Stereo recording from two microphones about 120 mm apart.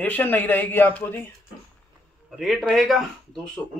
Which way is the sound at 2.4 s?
Centre (ahead or behind).